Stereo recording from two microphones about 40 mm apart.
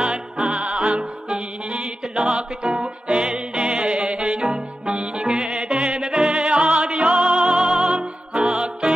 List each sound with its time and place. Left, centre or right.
0.0 s music: right